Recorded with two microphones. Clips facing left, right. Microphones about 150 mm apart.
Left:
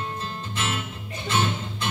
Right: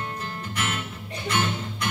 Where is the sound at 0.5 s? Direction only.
25° left (ahead or behind).